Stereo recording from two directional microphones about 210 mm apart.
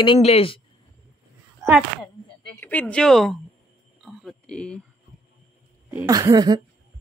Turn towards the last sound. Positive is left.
turn(degrees=-20)  # may be behind; listen again after turning